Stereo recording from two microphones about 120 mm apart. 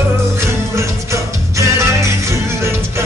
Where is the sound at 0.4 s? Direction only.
25° right (ahead or behind).